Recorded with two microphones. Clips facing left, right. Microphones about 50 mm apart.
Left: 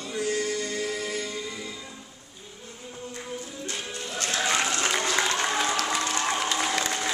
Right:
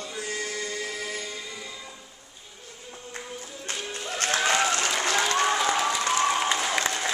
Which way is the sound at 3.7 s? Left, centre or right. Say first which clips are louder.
Right 3 dB; right.